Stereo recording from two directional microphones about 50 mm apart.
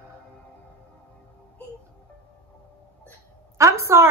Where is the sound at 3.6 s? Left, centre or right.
Right.